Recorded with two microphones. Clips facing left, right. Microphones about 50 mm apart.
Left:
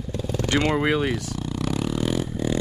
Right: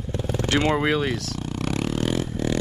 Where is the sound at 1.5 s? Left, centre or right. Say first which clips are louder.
Even; right.